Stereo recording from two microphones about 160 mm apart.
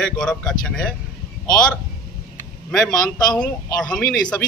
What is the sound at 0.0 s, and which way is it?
Speech, 5° left (ahead or behind).